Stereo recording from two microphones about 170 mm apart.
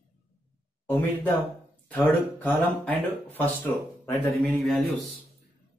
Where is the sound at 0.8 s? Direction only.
10° left (ahead or behind).